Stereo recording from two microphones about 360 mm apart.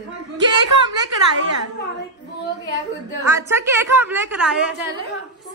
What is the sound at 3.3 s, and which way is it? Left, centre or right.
A woman's voice, centre.